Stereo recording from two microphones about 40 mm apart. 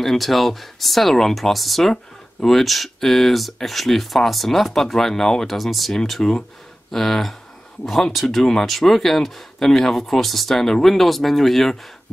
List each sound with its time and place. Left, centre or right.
0.0 s speech: centre